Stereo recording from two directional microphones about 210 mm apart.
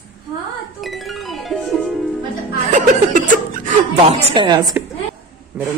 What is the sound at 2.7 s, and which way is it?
Chuckle, 40° right (ahead or behind).